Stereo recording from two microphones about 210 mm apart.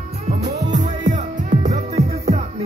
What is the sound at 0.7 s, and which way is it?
Music, 35° right (ahead or behind).